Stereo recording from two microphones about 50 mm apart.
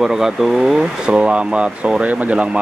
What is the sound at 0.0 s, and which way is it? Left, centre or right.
Speech, centre.